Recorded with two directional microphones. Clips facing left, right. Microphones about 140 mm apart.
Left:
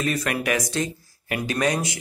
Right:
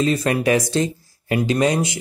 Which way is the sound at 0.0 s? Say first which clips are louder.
Right 6 dB; 30° right (ahead or behind).